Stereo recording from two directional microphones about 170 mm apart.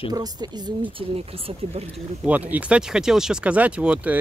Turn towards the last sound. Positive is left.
turn(degrees=-10)  # may be behind; listen again after turning